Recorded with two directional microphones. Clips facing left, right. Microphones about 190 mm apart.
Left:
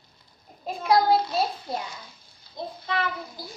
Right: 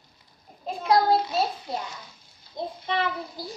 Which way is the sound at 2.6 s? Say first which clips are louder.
Right 2 dB; 20° right (ahead or behind).